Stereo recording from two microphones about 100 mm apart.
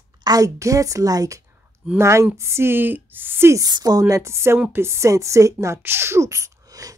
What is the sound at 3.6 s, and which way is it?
Speech, 40° right (ahead or behind).